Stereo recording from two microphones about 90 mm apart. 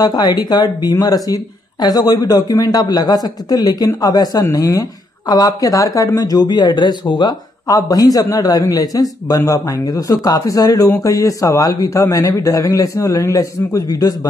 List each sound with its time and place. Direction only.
0.0 s speech: 45° left (ahead or behind)
7.6 s speech: 45° left (ahead or behind)